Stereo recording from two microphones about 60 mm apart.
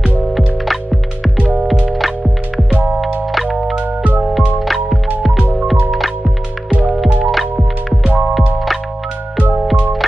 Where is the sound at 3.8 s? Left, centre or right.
Right.